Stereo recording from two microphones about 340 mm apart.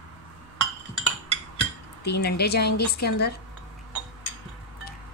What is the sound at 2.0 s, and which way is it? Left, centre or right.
Speech, left.